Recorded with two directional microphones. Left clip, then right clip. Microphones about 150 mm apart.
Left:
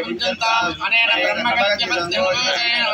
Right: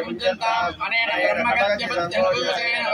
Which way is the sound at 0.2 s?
30° right (ahead or behind).